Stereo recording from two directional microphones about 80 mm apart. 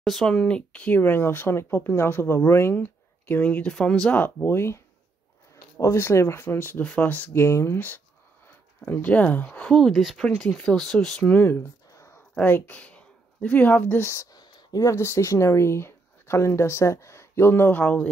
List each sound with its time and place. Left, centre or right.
0.0 s speech: centre; by 3.7 s left
3.7 s speech: centre
4.1 s speech: left
7.3 s speech: left
8.5 s speech: left
9.7 s speech: centre
11.2 s speech: left
11.9 s a sound: left
12.5 s speech: left
14.3 s a sound: left
15.0 s speech: left